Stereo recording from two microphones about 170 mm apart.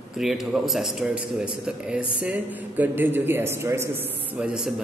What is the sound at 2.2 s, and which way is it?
A man's voice, 10° right (ahead or behind).